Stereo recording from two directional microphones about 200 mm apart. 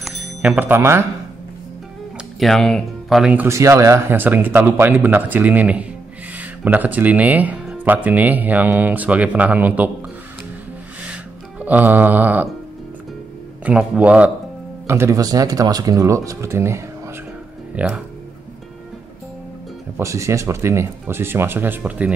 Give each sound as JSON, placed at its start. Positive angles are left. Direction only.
{"t": 0.0, "sound": "music", "side_deg": -5}
{"t": 2.4, "sound": "speech", "side_deg": 0}
{"t": 11.6, "sound": "speech", "side_deg": -10}
{"t": 13.7, "sound": "speech", "side_deg": -5}
{"t": 20.0, "sound": "speech", "side_deg": -15}